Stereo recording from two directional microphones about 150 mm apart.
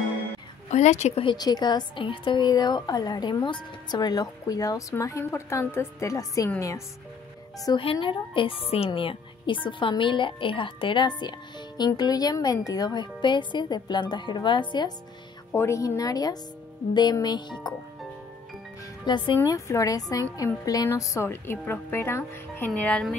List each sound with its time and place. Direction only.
0.7 s speech: 50° left (ahead or behind)
1.2 s a woman's voice: 30° left (ahead or behind)
7.6 s speech: 35° left (ahead or behind)
15.5 s a woman's voice: 20° left (ahead or behind)
19.0 s a woman's voice: 30° left (ahead or behind); by 23.1 s 5° left (ahead or behind)